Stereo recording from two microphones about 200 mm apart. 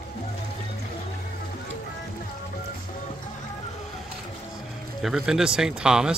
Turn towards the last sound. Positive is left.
turn(degrees=-5)  # may be behind; listen again after turning